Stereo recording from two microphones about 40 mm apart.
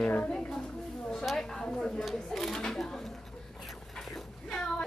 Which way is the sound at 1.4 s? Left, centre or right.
Centre.